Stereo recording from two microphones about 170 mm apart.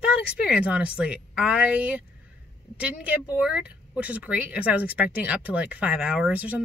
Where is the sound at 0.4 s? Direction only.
5° right (ahead or behind).